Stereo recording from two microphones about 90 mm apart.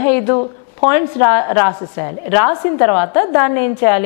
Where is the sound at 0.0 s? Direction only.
15° left (ahead or behind).